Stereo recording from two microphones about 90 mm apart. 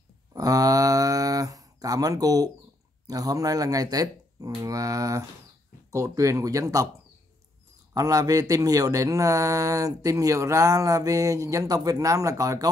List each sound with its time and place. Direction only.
0.3 s a sound: 40° right (ahead or behind)
3.1 s speech: 40° right (ahead or behind)
7.9 s speech: 40° right (ahead or behind)